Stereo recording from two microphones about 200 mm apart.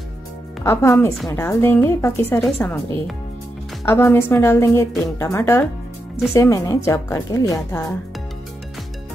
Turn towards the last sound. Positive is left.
turn(degrees=15)  # may be behind; listen again after turning